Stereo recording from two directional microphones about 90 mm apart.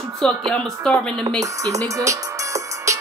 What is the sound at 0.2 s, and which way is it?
Speech, 10° left (ahead or behind).